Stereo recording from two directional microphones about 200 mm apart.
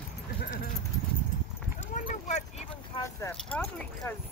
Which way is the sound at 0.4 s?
45° left (ahead or behind).